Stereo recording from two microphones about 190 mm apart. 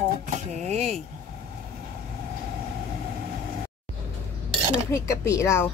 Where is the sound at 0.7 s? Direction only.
35° right (ahead or behind).